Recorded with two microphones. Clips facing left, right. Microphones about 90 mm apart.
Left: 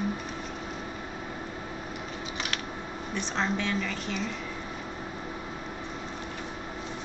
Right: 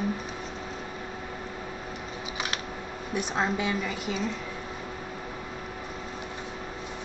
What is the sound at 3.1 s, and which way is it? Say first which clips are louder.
A woman's voice: right 2 dB; 10° right (ahead or behind).